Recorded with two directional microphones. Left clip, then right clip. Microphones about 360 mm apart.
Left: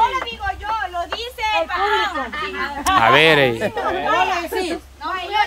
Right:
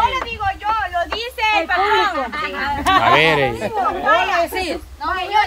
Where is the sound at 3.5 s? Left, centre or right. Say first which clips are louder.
Right 2 dB; left.